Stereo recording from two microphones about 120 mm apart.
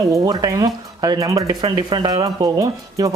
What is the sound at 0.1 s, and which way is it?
Speech, 35° right (ahead or behind).